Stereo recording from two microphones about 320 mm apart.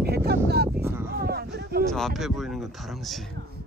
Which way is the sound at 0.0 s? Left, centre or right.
Right.